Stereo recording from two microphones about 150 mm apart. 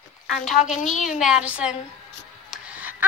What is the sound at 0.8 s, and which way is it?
Speech, 55° left (ahead or behind).